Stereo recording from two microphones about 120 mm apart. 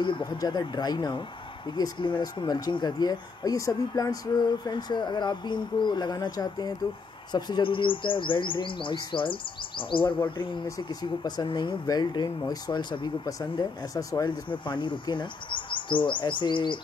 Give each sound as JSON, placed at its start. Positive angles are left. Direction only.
{"t": 0.0, "sound": "speech", "side_deg": 40}